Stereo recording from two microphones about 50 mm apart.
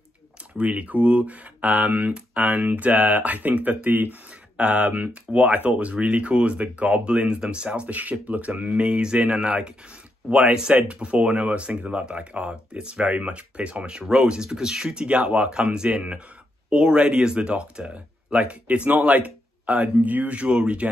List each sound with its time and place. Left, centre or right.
0.6 s speech: right
10.8 s speech: right
14.5 s speech: centre
15.0 s speech: right
18.9 s speech: right